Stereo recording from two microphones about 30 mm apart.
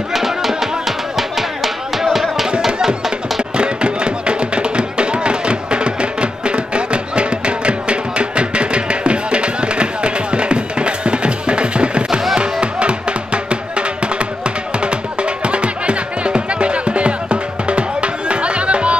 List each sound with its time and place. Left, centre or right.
0.1 s music: centre
2.9 s music: right